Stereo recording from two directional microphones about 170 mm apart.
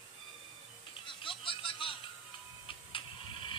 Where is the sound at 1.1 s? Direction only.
30° left (ahead or behind).